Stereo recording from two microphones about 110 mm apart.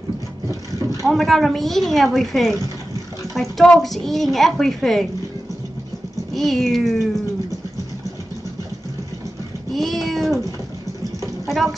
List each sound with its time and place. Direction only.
0.5 s vehicle: 30° right (ahead or behind)
1.0 s a woman's voice: centre (ahead or behind)
6.3 s a woman's voice: centre (ahead or behind)
9.7 s a sound: centre (ahead or behind)
11.4 s music: centre (ahead or behind)